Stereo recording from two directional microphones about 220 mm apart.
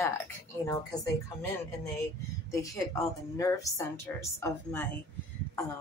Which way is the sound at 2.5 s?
15° left (ahead or behind).